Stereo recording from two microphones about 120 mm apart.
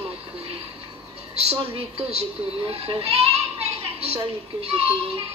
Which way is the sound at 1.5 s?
50° right (ahead or behind).